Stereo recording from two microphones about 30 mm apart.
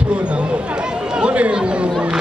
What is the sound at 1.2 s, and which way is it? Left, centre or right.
Speech, right.